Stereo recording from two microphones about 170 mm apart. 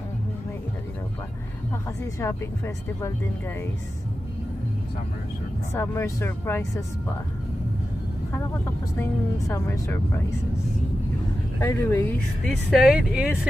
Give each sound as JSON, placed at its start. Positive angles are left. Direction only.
{"t": 2.1, "sound": "speech", "side_deg": 15}
{"t": 5.8, "sound": "speech", "side_deg": 15}
{"t": 9.0, "sound": "speech", "side_deg": 15}
{"t": 11.6, "sound": "speech", "side_deg": 15}
{"t": 12.4, "sound": "speech", "side_deg": -5}